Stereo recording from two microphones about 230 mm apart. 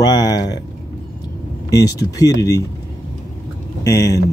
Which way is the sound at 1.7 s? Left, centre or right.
Centre.